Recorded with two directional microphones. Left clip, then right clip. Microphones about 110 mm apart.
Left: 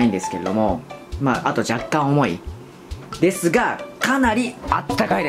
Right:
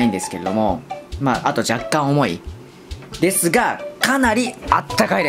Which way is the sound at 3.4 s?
30° right (ahead or behind).